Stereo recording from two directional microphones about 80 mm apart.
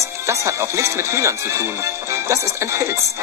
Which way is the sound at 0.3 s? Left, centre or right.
Right.